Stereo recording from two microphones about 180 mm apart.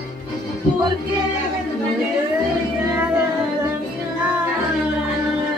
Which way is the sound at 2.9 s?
10° right (ahead or behind).